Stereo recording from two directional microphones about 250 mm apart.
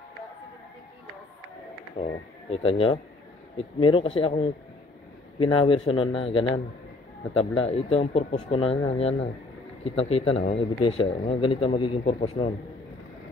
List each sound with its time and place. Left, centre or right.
2.0 s speech: left
5.5 s speech: left